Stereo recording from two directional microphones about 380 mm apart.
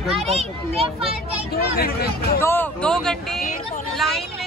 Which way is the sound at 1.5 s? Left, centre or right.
Left.